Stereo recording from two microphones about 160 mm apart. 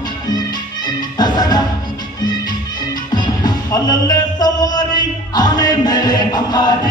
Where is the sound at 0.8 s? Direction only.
25° left (ahead or behind).